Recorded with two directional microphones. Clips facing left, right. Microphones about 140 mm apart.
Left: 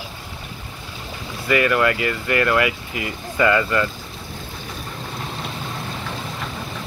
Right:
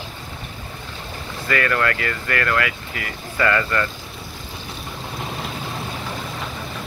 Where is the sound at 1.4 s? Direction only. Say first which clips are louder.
Left 3 dB; 15° left (ahead or behind).